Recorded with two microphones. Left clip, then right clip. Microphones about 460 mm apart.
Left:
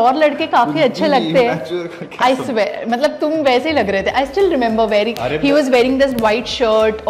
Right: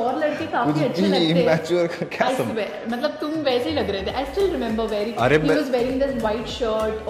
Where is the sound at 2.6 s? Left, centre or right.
Left.